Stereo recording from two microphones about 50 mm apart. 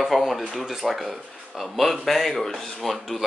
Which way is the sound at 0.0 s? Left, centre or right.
Centre.